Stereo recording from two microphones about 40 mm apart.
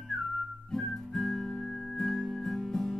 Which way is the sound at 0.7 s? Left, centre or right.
Centre.